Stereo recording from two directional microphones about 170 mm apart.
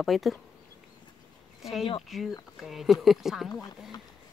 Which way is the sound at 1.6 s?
Centre (ahead or behind).